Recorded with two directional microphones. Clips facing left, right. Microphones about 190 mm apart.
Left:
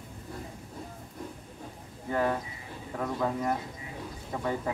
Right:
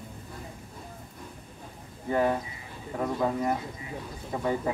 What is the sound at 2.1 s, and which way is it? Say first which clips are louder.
A man's voice: right 3 dB; 15° right (ahead or behind).